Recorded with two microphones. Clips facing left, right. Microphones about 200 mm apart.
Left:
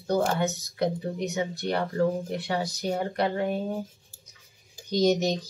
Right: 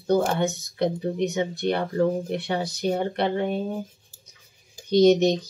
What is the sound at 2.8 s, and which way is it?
Speech, 30° right (ahead or behind).